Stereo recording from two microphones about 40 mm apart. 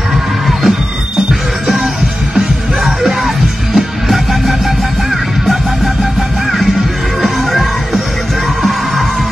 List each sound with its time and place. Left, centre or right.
0.5 s music: centre
2.8 s music: centre
7.2 s music: centre